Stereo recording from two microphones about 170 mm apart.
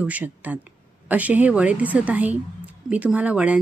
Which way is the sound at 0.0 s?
10° right (ahead or behind).